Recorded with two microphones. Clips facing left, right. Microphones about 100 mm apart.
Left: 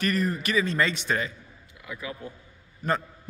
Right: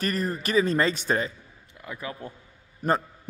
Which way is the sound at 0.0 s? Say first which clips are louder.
Left 1 dB; 35° right (ahead or behind).